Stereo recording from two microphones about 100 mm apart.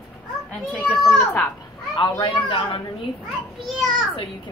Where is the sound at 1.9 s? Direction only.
55° left (ahead or behind).